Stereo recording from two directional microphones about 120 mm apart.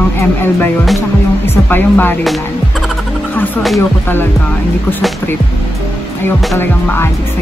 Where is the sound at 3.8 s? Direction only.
15° left (ahead or behind).